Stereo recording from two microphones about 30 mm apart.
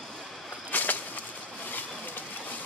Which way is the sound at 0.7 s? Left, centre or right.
Left.